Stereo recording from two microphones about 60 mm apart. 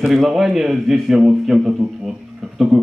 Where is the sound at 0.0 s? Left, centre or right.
Centre.